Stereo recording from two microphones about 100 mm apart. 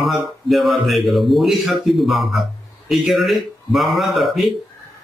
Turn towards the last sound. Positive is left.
turn(degrees=0)  # may be behind; listen again after turning